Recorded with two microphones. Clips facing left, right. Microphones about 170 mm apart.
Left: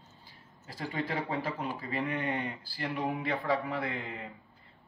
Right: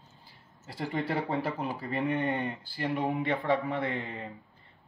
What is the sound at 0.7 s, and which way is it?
Speech, 25° right (ahead or behind).